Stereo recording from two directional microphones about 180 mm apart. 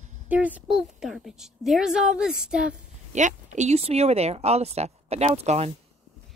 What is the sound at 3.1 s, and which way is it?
Speech, 40° right (ahead or behind).